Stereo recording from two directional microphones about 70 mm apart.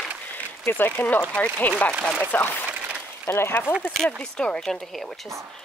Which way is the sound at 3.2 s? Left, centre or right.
Left.